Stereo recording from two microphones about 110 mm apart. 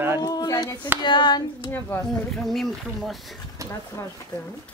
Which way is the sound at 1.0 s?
45° left (ahead or behind).